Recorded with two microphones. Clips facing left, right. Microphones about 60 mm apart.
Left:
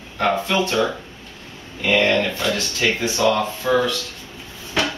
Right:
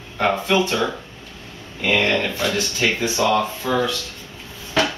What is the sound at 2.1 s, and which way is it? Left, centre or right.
Speech, centre.